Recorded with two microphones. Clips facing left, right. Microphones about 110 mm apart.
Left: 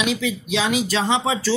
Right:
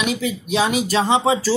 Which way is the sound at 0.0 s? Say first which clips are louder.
Even; 45° right (ahead or behind).